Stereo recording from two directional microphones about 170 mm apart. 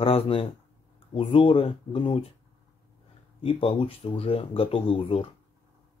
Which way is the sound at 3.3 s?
35° left (ahead or behind).